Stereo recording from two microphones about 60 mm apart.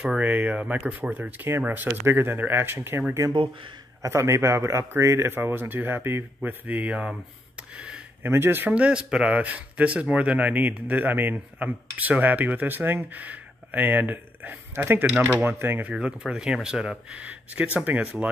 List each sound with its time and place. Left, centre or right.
0.2 s speech: right
3.2 s speech: centre
4.0 s speech: right; by 7.2 s centre
7.7 s a sound: centre
8.2 s speech: right
8.7 s speech: centre; by 15.8 s right
15.9 s speech: centre
17.2 s speech: right